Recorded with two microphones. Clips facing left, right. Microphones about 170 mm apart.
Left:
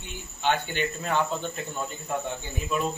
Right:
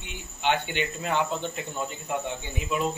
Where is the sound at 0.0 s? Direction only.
20° right (ahead or behind).